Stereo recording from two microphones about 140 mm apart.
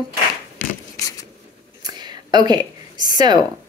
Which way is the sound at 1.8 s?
30° right (ahead or behind).